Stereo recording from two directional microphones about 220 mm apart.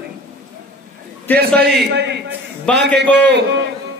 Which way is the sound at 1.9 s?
50° right (ahead or behind).